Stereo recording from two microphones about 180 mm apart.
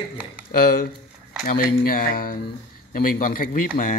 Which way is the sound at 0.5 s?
55° left (ahead or behind).